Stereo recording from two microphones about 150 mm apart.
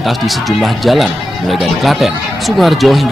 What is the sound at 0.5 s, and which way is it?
Speech, centre (ahead or behind).